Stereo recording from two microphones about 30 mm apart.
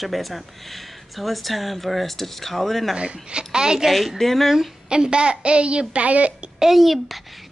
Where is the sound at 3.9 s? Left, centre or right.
Centre.